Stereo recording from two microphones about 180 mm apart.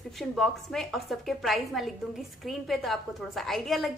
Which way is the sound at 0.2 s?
Centre (ahead or behind).